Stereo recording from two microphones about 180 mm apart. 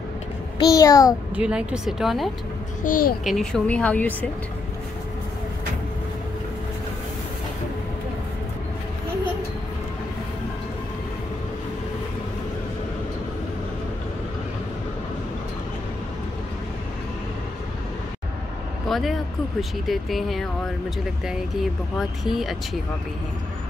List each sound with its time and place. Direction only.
0.6 s a child's voice: 20° left (ahead or behind)
1.3 s speech: 5° right (ahead or behind)
2.8 s a child's voice: 50° left (ahead or behind)
3.3 s a woman's voice: centre (ahead or behind)
18.9 s vehicle: centre (ahead or behind)
19.9 s speech: centre (ahead or behind)